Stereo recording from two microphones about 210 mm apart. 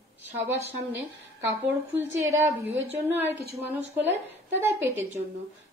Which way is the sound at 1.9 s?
10° right (ahead or behind).